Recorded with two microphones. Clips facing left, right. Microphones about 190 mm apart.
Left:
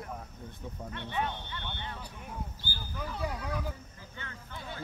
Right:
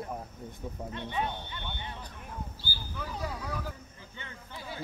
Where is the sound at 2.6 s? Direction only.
10° right (ahead or behind).